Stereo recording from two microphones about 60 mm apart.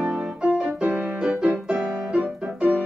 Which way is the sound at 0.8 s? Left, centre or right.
Right.